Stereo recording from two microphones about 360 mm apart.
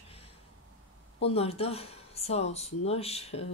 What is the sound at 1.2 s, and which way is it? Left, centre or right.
Speech, centre.